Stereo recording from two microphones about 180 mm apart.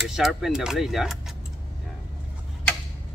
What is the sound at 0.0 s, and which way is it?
Speech, centre (ahead or behind).